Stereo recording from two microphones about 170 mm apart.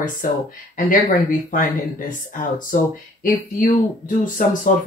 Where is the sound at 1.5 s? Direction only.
50° left (ahead or behind).